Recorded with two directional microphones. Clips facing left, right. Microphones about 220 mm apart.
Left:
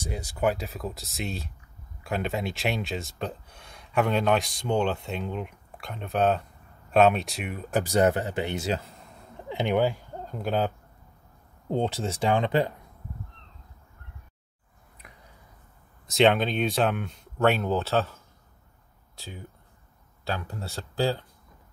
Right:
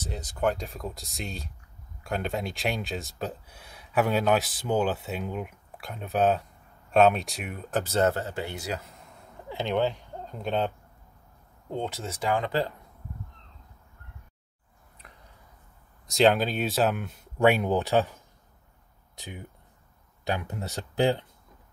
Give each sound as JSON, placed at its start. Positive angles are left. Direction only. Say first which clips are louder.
{"t": 0.0, "sound": "speech", "louder": "left 1 dB", "side_deg": 10}
{"t": 7.8, "sound": "speech", "louder": "left 3 dB", "side_deg": 15}
{"t": 9.5, "sound": "speech", "louder": "left 2 dB", "side_deg": 15}
{"t": 11.7, "sound": "speech", "louder": "left 5 dB", "side_deg": 30}
{"t": 16.1, "sound": "speech", "louder": "left 1 dB", "side_deg": 0}